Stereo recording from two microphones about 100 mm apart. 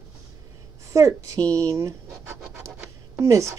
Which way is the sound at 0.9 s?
35° right (ahead or behind).